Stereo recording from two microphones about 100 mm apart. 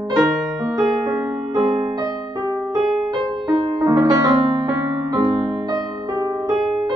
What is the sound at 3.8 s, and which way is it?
Music, 40° right (ahead or behind).